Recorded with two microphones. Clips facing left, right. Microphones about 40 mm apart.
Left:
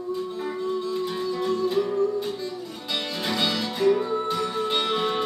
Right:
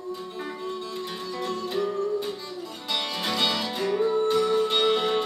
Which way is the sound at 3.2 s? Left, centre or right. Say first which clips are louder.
Left 1 dB; centre.